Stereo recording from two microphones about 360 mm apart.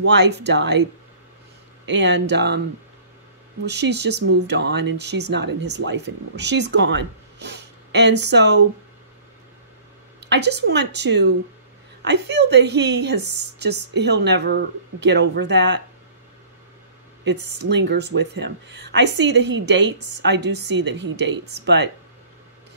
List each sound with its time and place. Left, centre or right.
0.0 s speech: right
1.9 s speech: right
3.6 s speech: right
10.3 s speech: right
17.4 s speech: right
17.6 s speech: right